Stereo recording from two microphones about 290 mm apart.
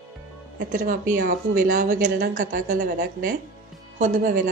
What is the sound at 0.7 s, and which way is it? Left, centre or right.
A woman's voice, right.